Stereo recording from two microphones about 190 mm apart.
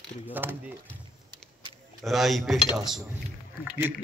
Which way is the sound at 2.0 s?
Centre (ahead or behind).